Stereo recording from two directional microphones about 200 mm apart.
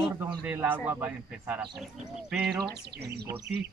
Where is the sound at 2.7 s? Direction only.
55° right (ahead or behind).